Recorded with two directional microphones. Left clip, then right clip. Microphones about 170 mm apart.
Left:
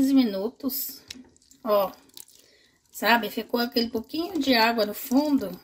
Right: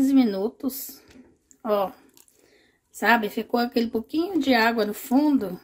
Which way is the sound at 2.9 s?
15° right (ahead or behind).